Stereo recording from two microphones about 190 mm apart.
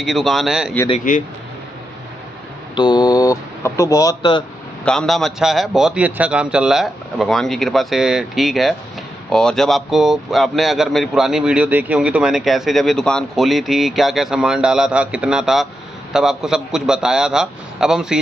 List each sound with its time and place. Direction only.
0.0 s speech: centre (ahead or behind)
1.1 s speech: 45° left (ahead or behind)
2.7 s speech: 25° left (ahead or behind)
4.8 s speech: centre (ahead or behind)